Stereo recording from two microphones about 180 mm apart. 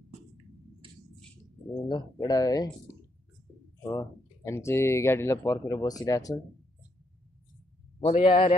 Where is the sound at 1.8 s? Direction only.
20° left (ahead or behind).